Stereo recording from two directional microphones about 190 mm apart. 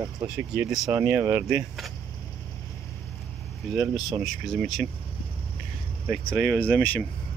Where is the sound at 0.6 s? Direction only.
Centre (ahead or behind).